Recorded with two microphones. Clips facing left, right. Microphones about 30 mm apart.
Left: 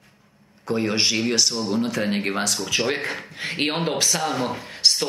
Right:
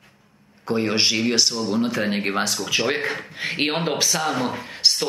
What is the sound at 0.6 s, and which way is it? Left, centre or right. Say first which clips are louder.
Speech: right 1 dB; centre.